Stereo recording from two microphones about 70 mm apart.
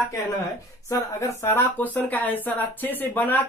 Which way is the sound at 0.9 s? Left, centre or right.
Left.